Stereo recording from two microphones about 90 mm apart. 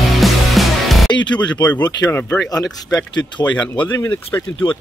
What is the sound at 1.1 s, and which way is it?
Music, 55° left (ahead or behind).